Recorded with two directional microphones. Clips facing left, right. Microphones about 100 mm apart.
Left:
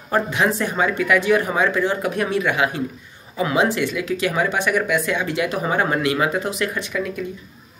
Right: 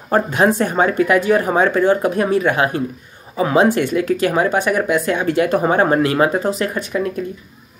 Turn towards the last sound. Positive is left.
turn(degrees=-40)  # may be behind; listen again after turning